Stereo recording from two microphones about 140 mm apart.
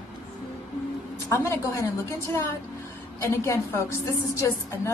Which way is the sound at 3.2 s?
20° left (ahead or behind).